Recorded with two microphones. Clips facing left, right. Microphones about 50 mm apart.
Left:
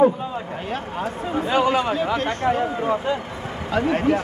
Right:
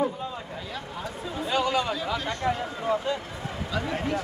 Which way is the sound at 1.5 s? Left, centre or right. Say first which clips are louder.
Left 5 dB; left.